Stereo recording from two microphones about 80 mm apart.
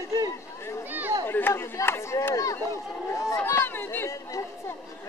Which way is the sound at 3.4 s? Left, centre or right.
Left.